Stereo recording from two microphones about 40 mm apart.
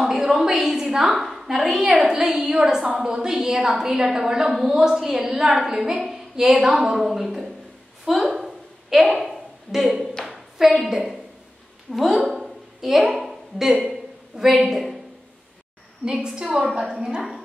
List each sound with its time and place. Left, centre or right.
0.0 s a woman's voice: centre
8.4 s a sound: centre
10.9 s a woman's voice: centre
12.3 s a sound: centre
16.0 s a woman's voice: right
16.4 s a woman's voice: centre